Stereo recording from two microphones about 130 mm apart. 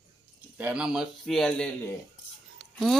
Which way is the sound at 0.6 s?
10° right (ahead or behind).